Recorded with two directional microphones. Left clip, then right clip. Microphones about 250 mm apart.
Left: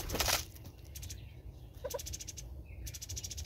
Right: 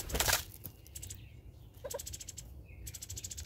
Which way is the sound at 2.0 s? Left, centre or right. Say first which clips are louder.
Left 2 dB; centre.